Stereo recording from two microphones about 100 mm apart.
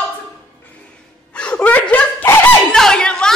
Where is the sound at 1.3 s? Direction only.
10° left (ahead or behind).